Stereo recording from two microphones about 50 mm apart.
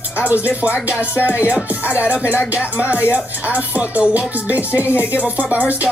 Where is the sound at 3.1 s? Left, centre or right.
Right.